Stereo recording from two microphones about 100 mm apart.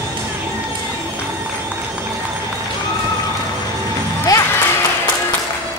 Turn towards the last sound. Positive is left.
turn(degrees=35)  # may be behind; listen again after turning